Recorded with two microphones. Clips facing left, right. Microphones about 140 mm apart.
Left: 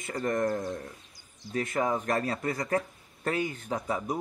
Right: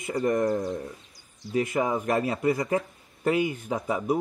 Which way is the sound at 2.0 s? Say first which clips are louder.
Right 5 dB; 15° right (ahead or behind).